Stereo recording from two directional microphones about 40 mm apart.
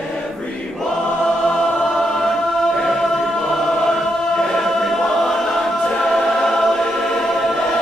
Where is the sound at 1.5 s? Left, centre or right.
Centre.